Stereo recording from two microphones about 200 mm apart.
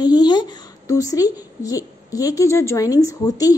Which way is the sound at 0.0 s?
20° left (ahead or behind).